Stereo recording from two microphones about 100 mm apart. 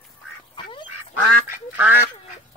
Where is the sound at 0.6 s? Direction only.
60° left (ahead or behind).